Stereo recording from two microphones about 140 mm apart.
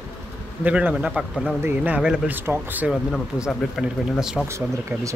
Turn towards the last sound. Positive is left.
turn(degrees=-20)  # may be behind; listen again after turning